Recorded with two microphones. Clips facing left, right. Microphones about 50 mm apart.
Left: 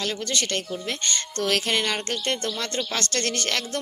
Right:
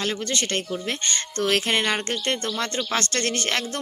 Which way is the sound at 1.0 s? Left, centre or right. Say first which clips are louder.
Right 1 dB; right.